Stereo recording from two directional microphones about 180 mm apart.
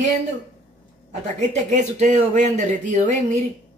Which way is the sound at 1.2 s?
40° right (ahead or behind).